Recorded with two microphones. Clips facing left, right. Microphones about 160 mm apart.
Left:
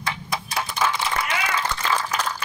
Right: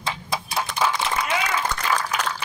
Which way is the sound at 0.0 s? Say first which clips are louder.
Right 1 dB; 20° right (ahead or behind).